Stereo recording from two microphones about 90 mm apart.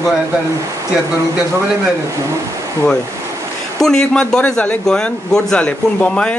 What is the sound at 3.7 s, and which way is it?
Speech, 5° left (ahead or behind).